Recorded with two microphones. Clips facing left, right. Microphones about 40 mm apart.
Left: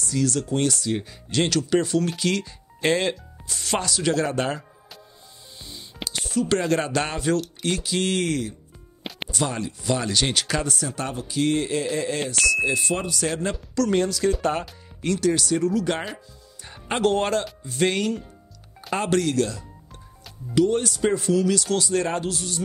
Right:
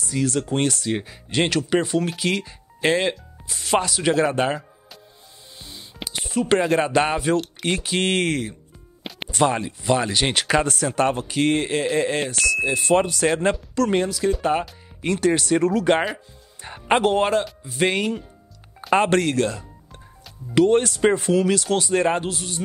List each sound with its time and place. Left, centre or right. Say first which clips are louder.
0.0 s a man's voice: right 1 dB; right
6.0 s music: right 1 dB; centre
6.6 s speech: right 4 dB; centre
7.6 s a man's voice: right 2 dB; right
12.9 s a man's voice: right 7 dB; right
13.9 s speech: right 1 dB; centre
15.1 s a man's voice: right 3 dB; right
17.0 s speech: right 2 dB; centre
18.8 s speech: right 5 dB; right
20.5 s a man's voice: right 4 dB; right